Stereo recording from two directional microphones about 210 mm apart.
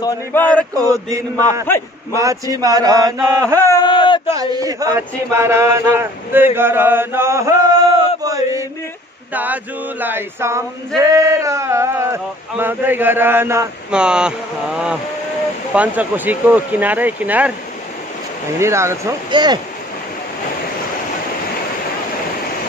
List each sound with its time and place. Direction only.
0.0 s speech: 15° left (ahead or behind)
1.1 s speech: 15° right (ahead or behind)
3.6 s speech: 20° left (ahead or behind)
4.3 s speech: 15° right (ahead or behind)
8.2 s chant: 15° right (ahead or behind)
9.3 s speech: 10° right (ahead or behind)
15.7 s speech: 5° right (ahead or behind)
18.6 s speech: 15° right (ahead or behind)